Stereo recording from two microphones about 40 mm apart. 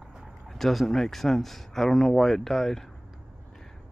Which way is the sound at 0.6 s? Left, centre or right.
Centre.